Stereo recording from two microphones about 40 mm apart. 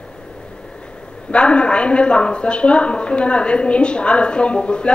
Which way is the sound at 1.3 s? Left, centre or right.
Left.